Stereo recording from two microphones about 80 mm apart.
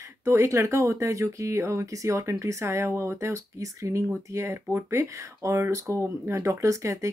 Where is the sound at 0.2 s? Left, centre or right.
Right.